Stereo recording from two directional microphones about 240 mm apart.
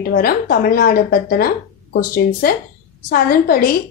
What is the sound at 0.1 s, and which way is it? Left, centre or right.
Speech, left.